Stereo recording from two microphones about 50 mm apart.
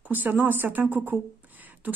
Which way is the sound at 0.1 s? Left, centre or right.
Right.